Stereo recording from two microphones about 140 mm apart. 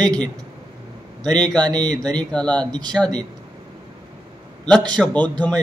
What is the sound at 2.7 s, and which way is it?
Speech, 30° right (ahead or behind).